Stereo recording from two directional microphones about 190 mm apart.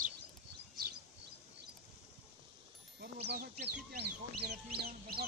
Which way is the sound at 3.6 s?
60° right (ahead or behind).